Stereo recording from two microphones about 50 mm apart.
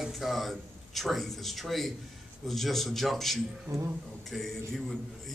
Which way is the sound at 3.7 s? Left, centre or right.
Right.